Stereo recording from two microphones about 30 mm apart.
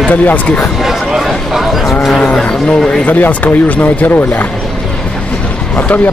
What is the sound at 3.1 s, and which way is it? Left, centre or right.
Speech, left.